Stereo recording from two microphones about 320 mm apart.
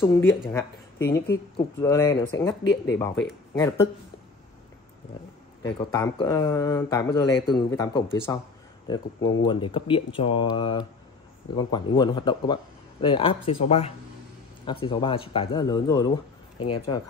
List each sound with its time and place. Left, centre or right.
0.0 s speech: centre
5.6 s speech: centre